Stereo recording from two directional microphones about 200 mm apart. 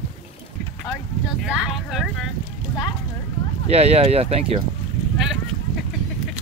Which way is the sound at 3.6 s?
30° right (ahead or behind).